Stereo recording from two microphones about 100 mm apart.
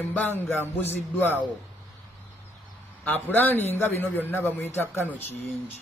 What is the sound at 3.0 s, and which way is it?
A man's voice, 20° left (ahead or behind).